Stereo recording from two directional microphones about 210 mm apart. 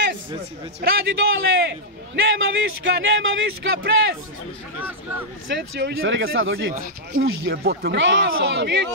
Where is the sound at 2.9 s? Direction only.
65° right (ahead or behind).